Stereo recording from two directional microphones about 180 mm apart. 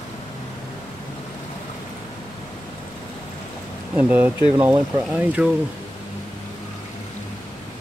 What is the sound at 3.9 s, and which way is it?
Speech, 10° right (ahead or behind).